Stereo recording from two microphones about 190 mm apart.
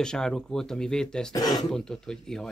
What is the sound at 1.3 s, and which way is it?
Speech, 20° left (ahead or behind).